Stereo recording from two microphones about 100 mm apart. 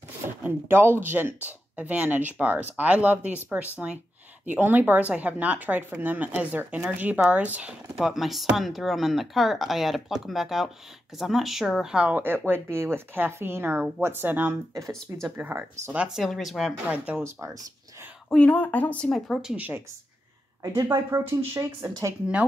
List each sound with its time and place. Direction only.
0.4 s speech: 20° right (ahead or behind)
7.9 s speech: 5° right (ahead or behind)
12.2 s speech: 20° right (ahead or behind)
14.7 s speech: 30° right (ahead or behind)
15.3 s speech: 20° right (ahead or behind)
16.3 s speech: centre (ahead or behind)
16.9 s speech: 15° right (ahead or behind)
18.3 s speech: 15° left (ahead or behind)
19.1 s speech: centre (ahead or behind)
19.5 s speech: 15° right (ahead or behind)
20.6 s speech: 35° right (ahead or behind)